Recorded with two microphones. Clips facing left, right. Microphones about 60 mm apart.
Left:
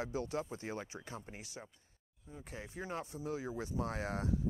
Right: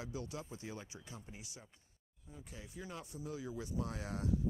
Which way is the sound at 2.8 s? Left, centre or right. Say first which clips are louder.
Left 5 dB; left.